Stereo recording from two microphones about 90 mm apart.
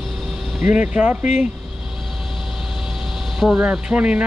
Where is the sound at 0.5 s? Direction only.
20° right (ahead or behind).